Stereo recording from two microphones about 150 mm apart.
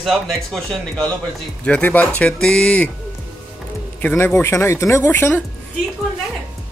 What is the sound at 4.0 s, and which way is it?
Speech, 10° left (ahead or behind).